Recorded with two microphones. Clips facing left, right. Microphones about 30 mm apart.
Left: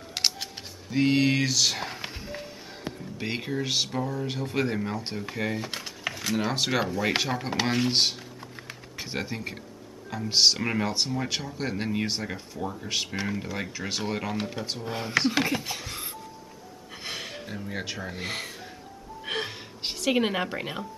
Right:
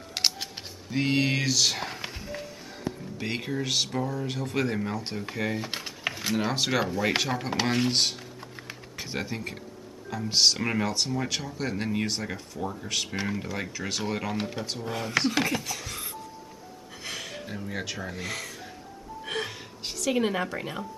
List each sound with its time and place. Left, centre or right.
0.1 s music: centre
3.2 s speech: centre
7.9 s speech: centre
10.9 s speech: centre
13.1 s speech: centre
15.8 s doorbell: centre
17.0 s music: centre
17.5 s speech: centre
18.1 s speech: left
19.2 s music: left